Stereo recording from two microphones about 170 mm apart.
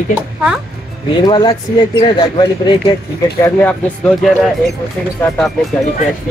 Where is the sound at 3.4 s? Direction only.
10° left (ahead or behind).